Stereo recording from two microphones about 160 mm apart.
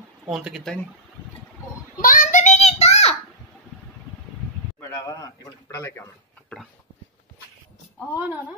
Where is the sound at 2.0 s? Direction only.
60° left (ahead or behind); by 3.2 s 40° left (ahead or behind).